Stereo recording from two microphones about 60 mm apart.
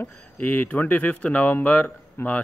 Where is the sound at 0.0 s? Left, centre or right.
Left.